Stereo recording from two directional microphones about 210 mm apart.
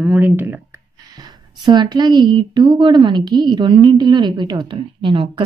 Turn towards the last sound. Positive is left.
turn(degrees=-25)  # may be behind; listen again after turning